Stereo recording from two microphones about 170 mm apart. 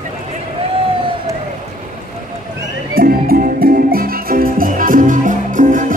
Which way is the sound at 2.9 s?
60° right (ahead or behind).